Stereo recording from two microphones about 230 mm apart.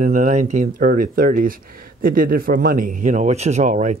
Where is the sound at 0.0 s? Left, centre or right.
Right.